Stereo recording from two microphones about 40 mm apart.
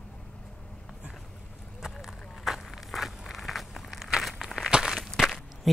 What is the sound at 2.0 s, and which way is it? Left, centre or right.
Walk, centre.